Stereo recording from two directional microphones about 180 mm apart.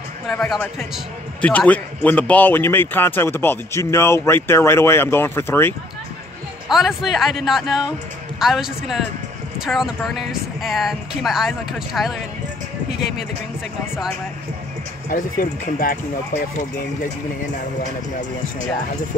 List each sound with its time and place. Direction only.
0.3 s a man's voice: 5° left (ahead or behind)
6.7 s speech: centre (ahead or behind)
15.0 s speech: 50° left (ahead or behind)